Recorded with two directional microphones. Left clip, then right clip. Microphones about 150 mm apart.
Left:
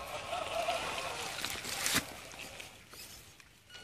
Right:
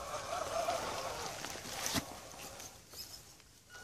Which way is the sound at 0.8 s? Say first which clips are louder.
Left 2 dB; 10° right (ahead or behind).